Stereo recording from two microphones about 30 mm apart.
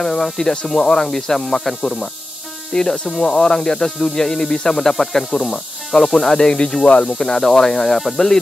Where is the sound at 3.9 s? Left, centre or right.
Centre.